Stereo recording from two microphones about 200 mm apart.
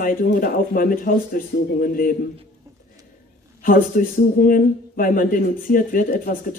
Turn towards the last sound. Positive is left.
turn(degrees=45)  # may be behind; listen again after turning